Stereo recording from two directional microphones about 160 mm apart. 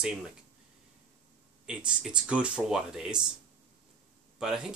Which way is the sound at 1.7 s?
5° right (ahead or behind).